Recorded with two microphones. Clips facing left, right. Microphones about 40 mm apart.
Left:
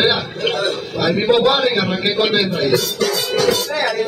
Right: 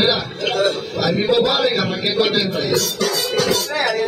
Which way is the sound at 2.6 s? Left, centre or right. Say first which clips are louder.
Left 2 dB; centre.